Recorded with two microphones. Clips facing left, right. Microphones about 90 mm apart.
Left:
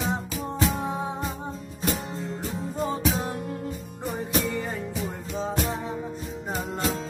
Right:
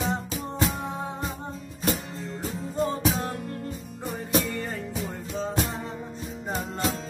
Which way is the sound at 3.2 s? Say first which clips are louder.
Left 1 dB; 15° left (ahead or behind).